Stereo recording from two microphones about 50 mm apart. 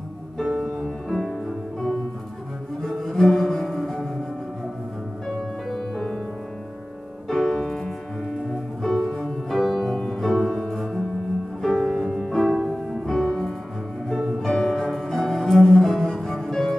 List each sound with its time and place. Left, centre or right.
0.5 s music: centre
5.2 s music: centre
7.2 s music: centre
15.0 s cello: centre